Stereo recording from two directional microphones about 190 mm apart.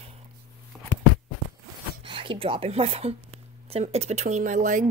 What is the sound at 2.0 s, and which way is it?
Speech, 25° right (ahead or behind).